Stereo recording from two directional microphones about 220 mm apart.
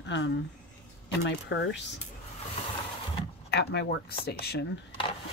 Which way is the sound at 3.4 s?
50° left (ahead or behind).